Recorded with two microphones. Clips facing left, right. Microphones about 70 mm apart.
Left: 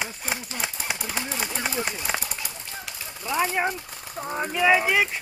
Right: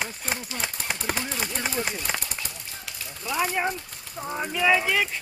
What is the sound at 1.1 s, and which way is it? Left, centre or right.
Speech, centre.